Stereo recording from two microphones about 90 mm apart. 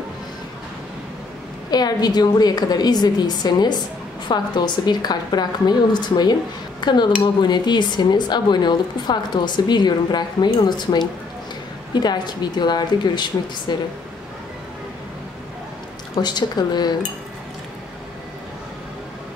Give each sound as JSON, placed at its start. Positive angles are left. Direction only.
{"t": 1.7, "sound": "a woman's voice", "side_deg": 50}
{"t": 16.2, "sound": "a woman's voice", "side_deg": 55}